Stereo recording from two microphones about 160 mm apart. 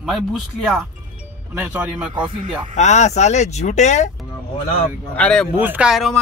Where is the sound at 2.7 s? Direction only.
45° left (ahead or behind).